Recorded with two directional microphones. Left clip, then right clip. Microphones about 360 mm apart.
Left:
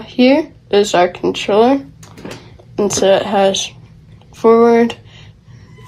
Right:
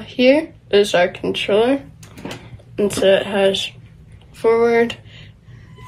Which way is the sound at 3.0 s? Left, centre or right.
Left.